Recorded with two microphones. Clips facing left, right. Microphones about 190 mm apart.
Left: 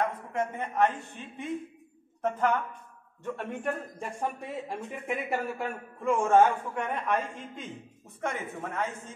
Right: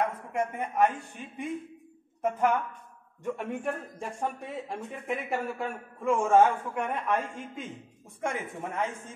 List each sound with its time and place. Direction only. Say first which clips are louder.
0.0 s speech: even; 10° right (ahead or behind)
3.6 s speech: even; 5° left (ahead or behind)